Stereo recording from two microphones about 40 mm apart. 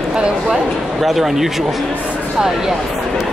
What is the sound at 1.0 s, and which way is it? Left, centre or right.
Speech, centre.